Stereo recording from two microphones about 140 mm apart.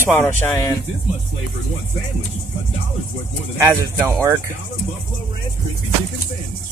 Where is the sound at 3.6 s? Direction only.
15° right (ahead or behind).